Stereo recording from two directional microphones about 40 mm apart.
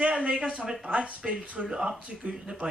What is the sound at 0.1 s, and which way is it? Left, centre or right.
Speech, right.